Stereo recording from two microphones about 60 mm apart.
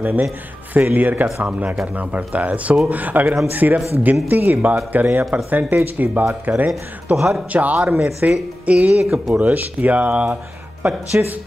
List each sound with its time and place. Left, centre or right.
0.0 s speech: right
7.2 s speech: centre
7.5 s speech: right